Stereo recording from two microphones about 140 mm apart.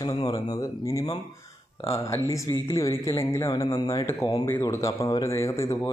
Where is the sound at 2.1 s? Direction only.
20° left (ahead or behind).